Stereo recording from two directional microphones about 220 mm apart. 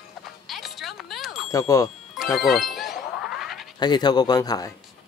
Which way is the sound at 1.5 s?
15° left (ahead or behind).